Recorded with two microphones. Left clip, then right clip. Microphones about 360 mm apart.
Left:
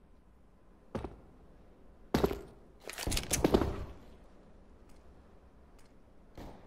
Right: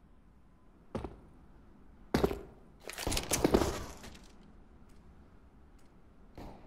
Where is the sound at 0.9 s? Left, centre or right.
Centre.